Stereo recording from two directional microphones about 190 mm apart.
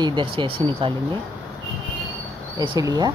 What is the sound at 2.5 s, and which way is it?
Speech, 20° right (ahead or behind).